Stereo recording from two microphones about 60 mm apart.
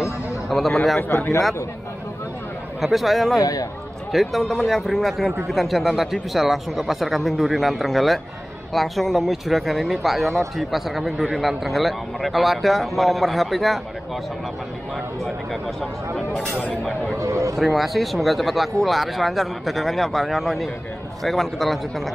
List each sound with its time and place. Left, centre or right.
0.5 s speech: centre
2.8 s speech: centre
3.3 s a man's voice: left
4.1 s speech: centre
16.2 s speech: centre
17.2 s speech: right
17.6 s speech: centre